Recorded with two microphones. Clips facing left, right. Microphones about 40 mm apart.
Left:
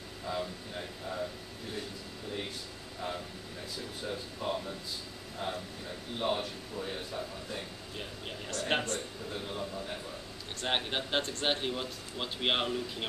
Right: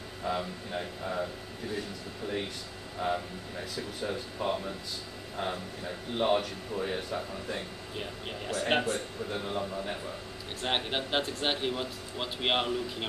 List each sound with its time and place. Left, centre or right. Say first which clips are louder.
0.2 s speech: right 3 dB; right
3.0 s speech: right 7 dB; right
4.4 s speech: right 4 dB; right
5.4 s speech: right 3 dB; right
6.1 s speech: right 5 dB; right
7.9 s a man's voice: right 4 dB; centre
9.4 s a man's voice: right 3 dB; right
10.6 s a man's voice: right 2 dB; centre